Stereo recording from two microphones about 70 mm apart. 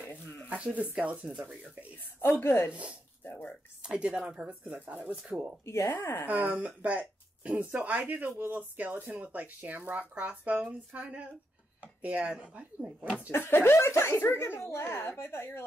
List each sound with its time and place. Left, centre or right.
0.9 s speech: centre
2.4 s a child's voice: left
2.7 s speech: centre
3.3 s a sound: left
3.8 s speech: centre
5.7 s a child's voice: left
6.2 s speech: right
13.3 s a child's voice: left